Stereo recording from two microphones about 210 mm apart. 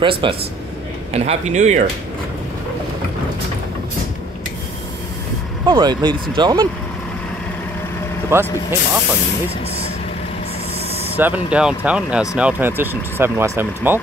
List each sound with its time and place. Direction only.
0.0 s speech: 25° right (ahead or behind)
5.7 s speech: 20° right (ahead or behind)
8.3 s speech: 10° right (ahead or behind)
11.1 s speech: 10° right (ahead or behind)